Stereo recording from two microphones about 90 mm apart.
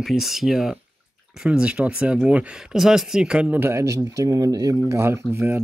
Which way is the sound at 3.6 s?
35° right (ahead or behind).